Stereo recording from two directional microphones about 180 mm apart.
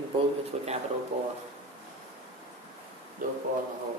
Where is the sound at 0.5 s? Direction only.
35° right (ahead or behind).